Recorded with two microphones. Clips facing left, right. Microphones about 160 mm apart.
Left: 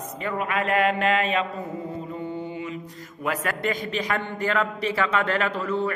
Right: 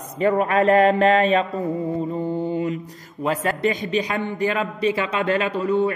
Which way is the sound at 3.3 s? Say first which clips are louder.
Right 5 dB; 25° right (ahead or behind).